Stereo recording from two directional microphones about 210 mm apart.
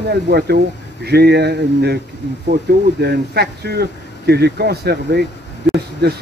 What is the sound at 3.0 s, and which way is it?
Speech, 50° right (ahead or behind).